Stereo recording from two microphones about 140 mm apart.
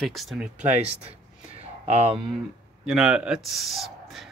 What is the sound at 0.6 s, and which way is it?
Speech, 50° right (ahead or behind).